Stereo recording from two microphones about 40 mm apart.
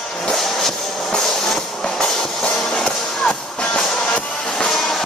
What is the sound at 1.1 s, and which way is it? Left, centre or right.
Music, centre.